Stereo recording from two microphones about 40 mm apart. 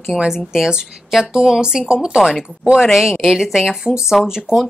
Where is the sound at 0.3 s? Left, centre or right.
Centre.